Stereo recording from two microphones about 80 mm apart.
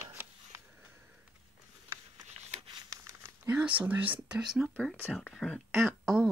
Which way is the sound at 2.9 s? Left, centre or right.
Right.